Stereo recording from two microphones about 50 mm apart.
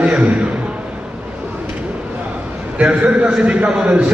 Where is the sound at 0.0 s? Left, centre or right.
Right.